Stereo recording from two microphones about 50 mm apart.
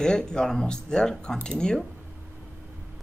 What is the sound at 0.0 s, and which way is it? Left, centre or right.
Speech, centre.